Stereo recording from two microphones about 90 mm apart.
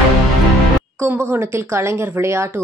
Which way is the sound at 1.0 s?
25° right (ahead or behind).